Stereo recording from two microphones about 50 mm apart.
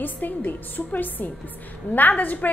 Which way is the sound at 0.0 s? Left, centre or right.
Left.